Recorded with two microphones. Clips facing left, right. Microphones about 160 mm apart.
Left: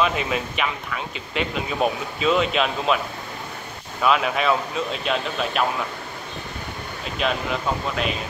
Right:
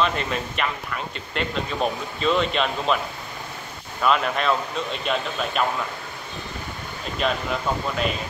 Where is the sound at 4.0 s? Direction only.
5° left (ahead or behind).